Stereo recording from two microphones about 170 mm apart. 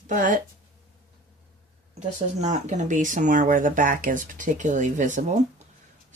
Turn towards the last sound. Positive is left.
turn(degrees=-45)  # may be behind; listen again after turning